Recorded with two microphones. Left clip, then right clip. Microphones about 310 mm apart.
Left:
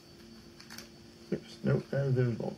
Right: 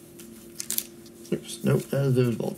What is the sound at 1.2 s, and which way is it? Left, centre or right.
Speech, centre.